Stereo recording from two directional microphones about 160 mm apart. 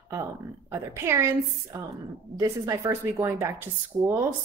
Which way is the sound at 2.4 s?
20° right (ahead or behind).